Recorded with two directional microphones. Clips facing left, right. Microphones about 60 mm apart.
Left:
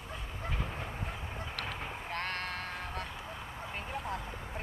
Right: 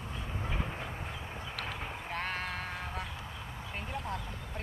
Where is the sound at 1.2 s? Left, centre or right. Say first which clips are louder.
Even; centre.